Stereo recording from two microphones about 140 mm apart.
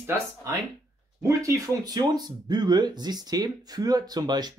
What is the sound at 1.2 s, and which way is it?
Speech, 20° right (ahead or behind).